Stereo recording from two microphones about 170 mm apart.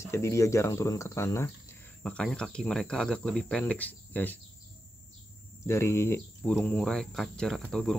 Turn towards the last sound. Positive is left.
turn(degrees=0)  # may be behind; listen again after turning